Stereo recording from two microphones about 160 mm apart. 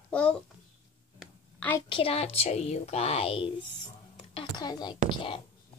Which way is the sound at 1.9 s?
35° left (ahead or behind).